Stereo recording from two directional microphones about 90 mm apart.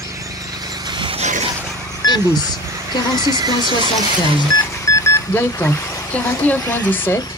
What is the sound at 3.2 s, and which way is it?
Speech, 50° right (ahead or behind).